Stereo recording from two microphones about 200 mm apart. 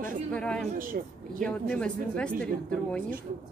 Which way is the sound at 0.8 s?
45° right (ahead or behind).